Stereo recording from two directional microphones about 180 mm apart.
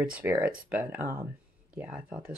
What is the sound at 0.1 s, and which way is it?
Speech, 10° right (ahead or behind).